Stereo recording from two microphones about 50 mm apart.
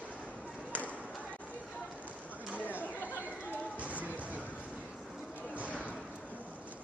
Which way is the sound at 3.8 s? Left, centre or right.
Right.